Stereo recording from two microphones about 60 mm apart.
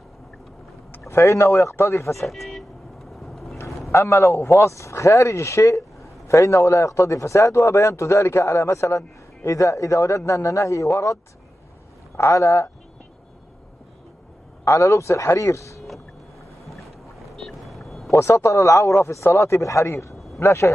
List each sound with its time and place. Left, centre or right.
1.0 s a man's voice: left
2.1 s speech: centre
3.2 s vehicle: centre
3.9 s a man's voice: left
12.2 s a man's voice: left
14.6 s a man's voice: left
16.6 s boat: centre
18.1 s a man's voice: left